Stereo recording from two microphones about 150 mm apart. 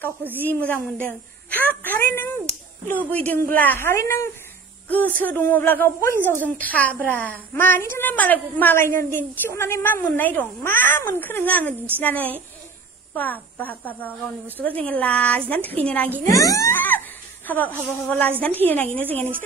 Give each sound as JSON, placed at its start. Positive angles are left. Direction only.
{"t": 0.4, "sound": "a woman's voice", "side_deg": 10}
{"t": 16.3, "sound": "a woman's voice", "side_deg": 20}